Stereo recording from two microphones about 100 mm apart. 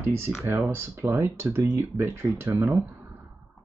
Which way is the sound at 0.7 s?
25° right (ahead or behind).